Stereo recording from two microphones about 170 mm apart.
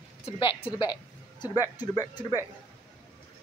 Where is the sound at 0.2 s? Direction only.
30° left (ahead or behind).